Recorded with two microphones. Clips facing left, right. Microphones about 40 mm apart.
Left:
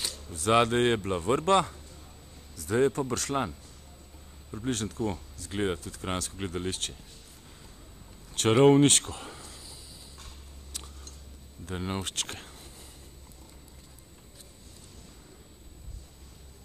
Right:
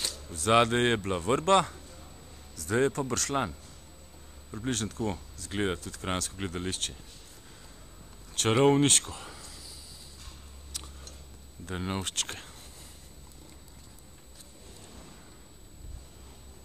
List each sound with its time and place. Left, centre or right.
0.5 s speech: centre
1.3 s speech: centre
4.6 s speech: centre
5.5 s speech: centre
5.8 s speech: centre
6.3 s speech: centre
8.4 s speech: centre
11.7 s speech: centre